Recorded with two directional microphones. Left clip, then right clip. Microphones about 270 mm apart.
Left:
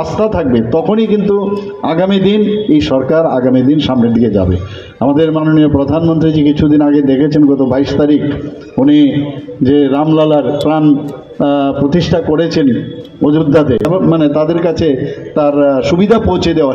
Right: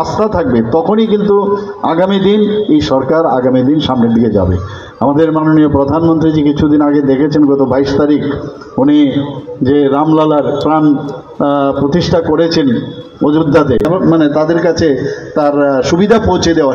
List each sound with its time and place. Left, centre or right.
0.2 s a man's voice: left